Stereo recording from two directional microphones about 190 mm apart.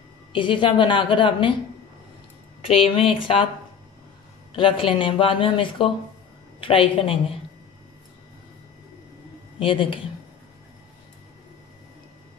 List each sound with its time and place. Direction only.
0.3 s speech: 25° left (ahead or behind)
2.6 s speech: 30° left (ahead or behind)
4.6 s speech: 25° left (ahead or behind)
9.6 s speech: 30° left (ahead or behind)